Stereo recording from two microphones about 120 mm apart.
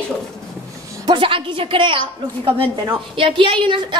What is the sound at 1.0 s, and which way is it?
A woman's voice, 45° right (ahead or behind).